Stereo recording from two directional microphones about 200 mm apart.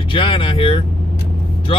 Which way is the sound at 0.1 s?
25° left (ahead or behind).